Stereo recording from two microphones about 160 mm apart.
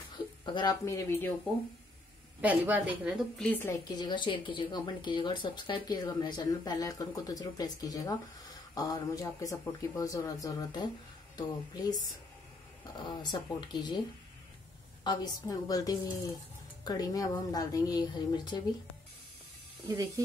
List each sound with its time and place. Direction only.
0.5 s speech: 30° left (ahead or behind)
0.8 s speech: 15° left (ahead or behind)
2.4 s speech: 10° right (ahead or behind)
3.3 s speech: 10° left (ahead or behind)
4.0 s speech: 30° left (ahead or behind)
15.0 s speech: 20° left (ahead or behind)